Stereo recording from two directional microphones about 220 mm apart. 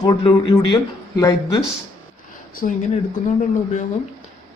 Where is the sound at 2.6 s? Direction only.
40° left (ahead or behind).